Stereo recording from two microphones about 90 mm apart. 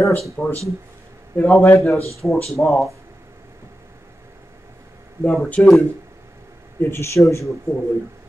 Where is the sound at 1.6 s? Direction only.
25° left (ahead or behind).